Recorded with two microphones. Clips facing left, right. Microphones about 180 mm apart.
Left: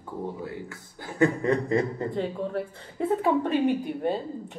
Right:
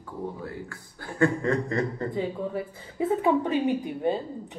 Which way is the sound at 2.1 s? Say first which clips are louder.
Even; centre (ahead or behind).